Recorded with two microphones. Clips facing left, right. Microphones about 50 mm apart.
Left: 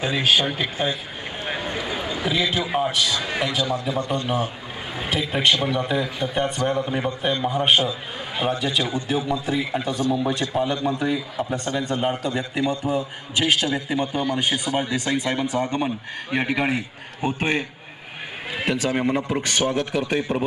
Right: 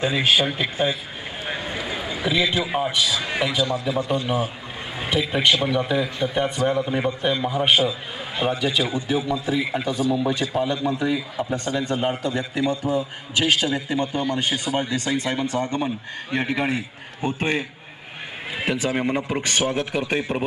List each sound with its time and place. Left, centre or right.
0.0 s speech: centre
1.4 s a sound: centre
3.7 s speech: centre
9.7 s a man's voice: centre
12.4 s a man's voice: left
13.6 s speech: centre
13.8 s a man's voice: centre